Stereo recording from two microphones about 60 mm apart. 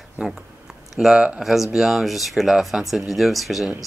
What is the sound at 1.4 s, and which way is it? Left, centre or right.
Speech, centre.